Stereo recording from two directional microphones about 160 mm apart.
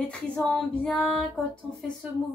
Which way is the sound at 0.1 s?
5° left (ahead or behind).